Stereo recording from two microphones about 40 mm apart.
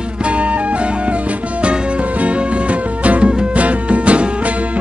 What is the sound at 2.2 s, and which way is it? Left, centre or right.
Music, right.